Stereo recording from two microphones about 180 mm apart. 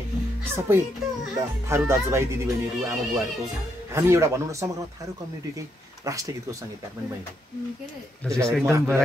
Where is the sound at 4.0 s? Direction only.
15° right (ahead or behind).